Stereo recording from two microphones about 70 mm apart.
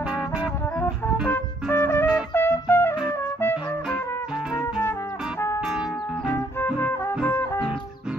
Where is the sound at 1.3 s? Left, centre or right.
Left.